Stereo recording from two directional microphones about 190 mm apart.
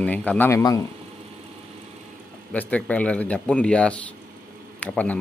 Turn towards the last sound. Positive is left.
turn(degrees=5)  # may be behind; listen again after turning